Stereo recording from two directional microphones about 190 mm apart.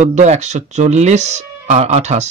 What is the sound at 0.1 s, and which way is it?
Speech, 35° right (ahead or behind).